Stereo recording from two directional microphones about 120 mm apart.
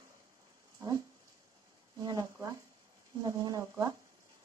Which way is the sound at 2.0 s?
35° right (ahead or behind).